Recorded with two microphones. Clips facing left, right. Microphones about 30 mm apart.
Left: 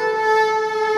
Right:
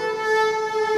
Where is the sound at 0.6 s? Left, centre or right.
Centre.